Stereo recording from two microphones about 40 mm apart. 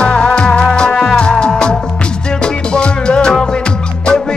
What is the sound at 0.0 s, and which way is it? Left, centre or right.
Music, left.